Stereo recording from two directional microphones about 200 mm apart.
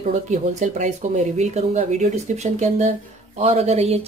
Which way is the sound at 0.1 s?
35° right (ahead or behind).